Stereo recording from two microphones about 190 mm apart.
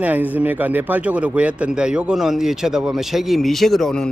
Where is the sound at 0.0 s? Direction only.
10° right (ahead or behind).